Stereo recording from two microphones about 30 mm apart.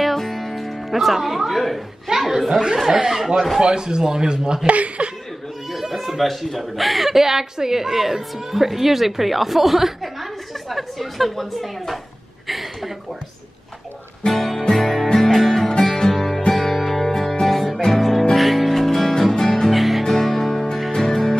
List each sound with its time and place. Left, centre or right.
0.0 s music: centre
0.9 s a woman's voice: centre
3.5 s speech: right
4.6 s speech: right
5.7 s a sound: centre
5.9 s a woman's voice: centre
12.4 s a sound: centre
14.2 s music: centre
16.2 s music: centre
17.7 s music: centre
18.3 s music: centre
19.7 s music: centre
20.1 s music: centre